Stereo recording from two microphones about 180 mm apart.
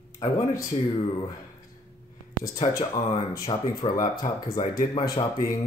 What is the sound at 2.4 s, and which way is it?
Speech, 20° left (ahead or behind).